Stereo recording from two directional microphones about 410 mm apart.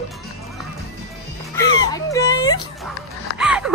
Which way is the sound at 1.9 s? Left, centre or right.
Centre.